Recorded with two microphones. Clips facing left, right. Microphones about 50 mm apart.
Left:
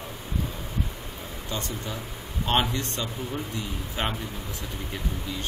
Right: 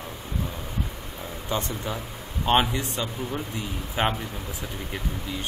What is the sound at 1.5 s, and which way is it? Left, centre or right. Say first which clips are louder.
A man's voice: right 4 dB; right.